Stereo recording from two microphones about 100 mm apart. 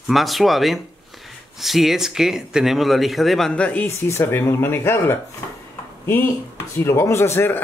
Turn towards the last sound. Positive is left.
turn(degrees=25)  # may be behind; listen again after turning